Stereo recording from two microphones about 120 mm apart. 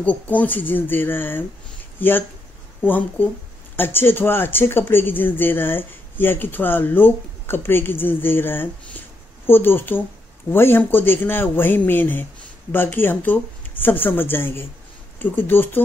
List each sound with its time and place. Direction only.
0.0 s speech: 10° left (ahead or behind)